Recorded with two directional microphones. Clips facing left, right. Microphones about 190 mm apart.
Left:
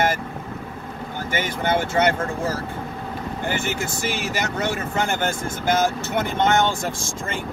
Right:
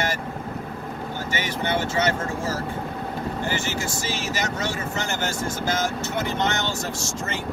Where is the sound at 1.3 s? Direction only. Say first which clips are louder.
Left 4 dB; 50° left (ahead or behind).